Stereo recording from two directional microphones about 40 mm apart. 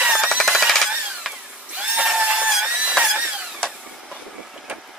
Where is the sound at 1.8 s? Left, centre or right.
Right.